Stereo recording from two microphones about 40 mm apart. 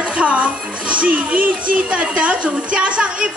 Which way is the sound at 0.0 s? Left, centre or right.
Right.